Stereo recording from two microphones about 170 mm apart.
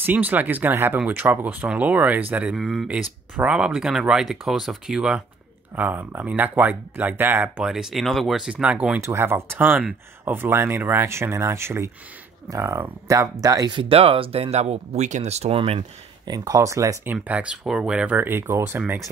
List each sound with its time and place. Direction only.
0.0 s speech: 10° right (ahead or behind); by 15.8 s 35° right (ahead or behind)
16.3 s speech: 20° right (ahead or behind)